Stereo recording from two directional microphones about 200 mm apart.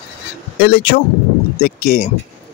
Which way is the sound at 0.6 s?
50° left (ahead or behind).